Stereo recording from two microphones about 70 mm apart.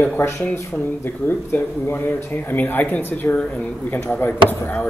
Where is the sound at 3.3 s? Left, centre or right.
Centre.